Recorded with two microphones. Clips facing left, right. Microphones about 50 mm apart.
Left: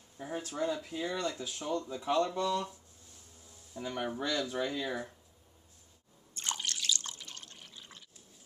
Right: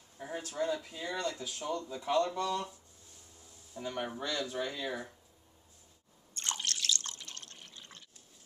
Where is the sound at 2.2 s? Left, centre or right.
Centre.